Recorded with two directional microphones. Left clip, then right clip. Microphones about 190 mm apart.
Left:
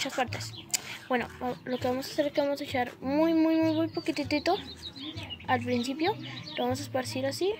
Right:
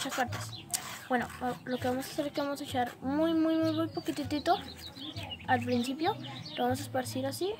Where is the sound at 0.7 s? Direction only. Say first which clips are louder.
Left 2 dB; centre (ahead or behind).